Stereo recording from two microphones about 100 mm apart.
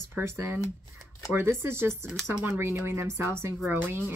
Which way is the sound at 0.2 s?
25° right (ahead or behind).